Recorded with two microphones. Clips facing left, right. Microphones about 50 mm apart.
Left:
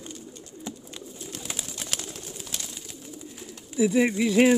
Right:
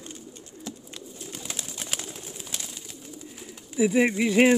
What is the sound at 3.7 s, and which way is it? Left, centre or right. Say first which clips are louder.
Speech: even; right.